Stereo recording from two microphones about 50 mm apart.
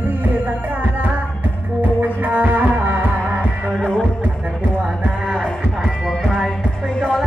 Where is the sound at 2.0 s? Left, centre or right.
Right.